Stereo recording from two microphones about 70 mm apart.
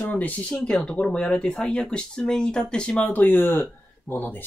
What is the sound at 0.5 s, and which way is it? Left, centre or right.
Speech, centre.